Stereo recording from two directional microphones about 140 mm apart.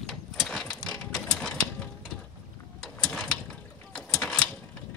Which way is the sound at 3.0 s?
5° left (ahead or behind).